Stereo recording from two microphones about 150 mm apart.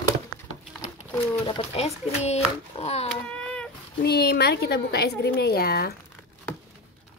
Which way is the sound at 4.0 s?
90° left.